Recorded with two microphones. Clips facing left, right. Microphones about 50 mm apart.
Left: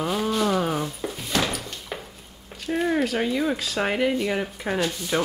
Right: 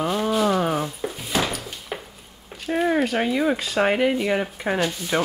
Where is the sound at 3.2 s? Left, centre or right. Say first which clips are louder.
Right 3 dB; centre.